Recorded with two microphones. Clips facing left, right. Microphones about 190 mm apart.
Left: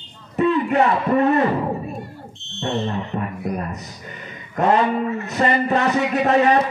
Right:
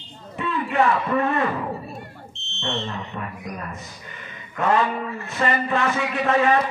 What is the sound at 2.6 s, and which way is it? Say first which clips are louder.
A man's voice: left 5 dB; 45° left (ahead or behind).